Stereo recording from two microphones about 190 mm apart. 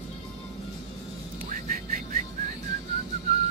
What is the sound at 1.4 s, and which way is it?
Vehicle, 40° right (ahead or behind).